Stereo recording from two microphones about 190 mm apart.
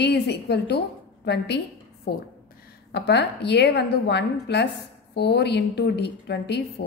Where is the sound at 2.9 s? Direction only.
65° left (ahead or behind).